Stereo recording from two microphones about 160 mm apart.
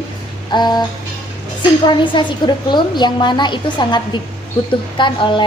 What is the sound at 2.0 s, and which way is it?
A woman's voice, 30° left (ahead or behind).